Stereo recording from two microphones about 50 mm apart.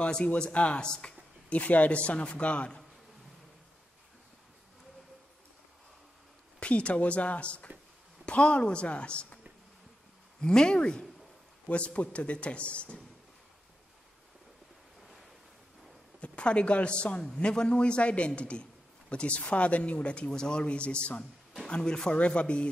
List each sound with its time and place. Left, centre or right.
0.0 s a man's voice: left
6.6 s a man's voice: left
10.4 s a man's voice: centre
16.2 s a man's voice: left